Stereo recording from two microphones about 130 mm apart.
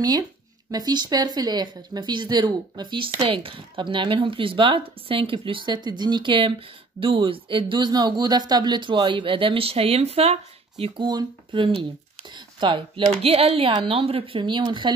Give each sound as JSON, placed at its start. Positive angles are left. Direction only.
{"t": 0.7, "sound": "speech", "side_deg": -30}
{"t": 11.0, "sound": "speech", "side_deg": -35}
{"t": 13.2, "sound": "speech", "side_deg": -50}